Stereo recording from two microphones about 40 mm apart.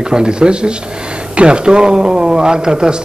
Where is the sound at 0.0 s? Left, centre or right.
Centre.